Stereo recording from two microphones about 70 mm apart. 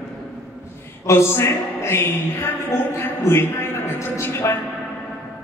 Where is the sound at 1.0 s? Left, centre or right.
Left.